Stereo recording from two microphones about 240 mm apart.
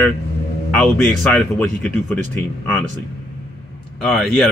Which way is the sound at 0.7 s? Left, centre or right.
Centre.